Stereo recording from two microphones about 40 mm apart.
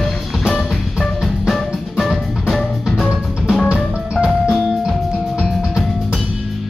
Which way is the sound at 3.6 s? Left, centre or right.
Right.